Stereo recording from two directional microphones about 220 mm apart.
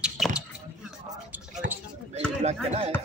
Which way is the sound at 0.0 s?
5° right (ahead or behind).